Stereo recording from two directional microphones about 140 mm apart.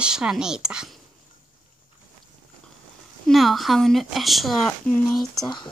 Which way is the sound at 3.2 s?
Centre (ahead or behind).